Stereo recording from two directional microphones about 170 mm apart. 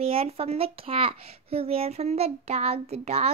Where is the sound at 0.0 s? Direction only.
35° right (ahead or behind).